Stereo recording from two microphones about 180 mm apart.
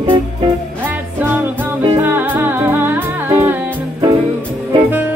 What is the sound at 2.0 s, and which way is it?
Music, 10° right (ahead or behind).